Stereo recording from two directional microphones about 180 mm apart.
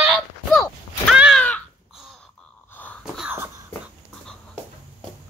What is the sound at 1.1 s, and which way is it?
Crow, centre (ahead or behind).